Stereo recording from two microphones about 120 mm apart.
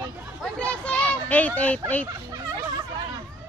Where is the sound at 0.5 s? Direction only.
10° left (ahead or behind).